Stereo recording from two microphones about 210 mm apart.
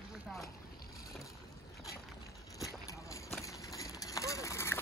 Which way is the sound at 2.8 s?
15° left (ahead or behind).